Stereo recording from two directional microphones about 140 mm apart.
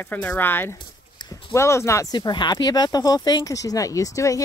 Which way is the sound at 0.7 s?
30° left (ahead or behind).